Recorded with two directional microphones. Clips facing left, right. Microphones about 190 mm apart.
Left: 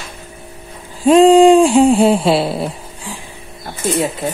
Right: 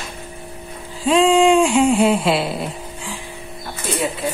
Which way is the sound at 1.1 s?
40° left (ahead or behind).